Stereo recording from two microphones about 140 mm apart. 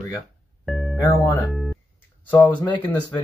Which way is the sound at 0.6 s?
Centre (ahead or behind).